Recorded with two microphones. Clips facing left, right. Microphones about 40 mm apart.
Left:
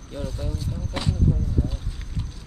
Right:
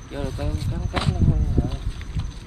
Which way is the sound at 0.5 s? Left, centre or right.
Right.